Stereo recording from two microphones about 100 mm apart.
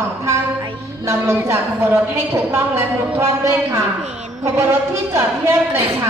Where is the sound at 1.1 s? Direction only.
25° right (ahead or behind).